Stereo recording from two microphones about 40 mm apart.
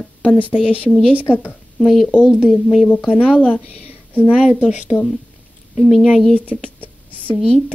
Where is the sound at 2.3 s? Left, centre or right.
Centre.